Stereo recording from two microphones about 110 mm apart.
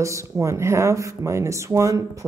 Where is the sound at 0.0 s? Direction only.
25° right (ahead or behind).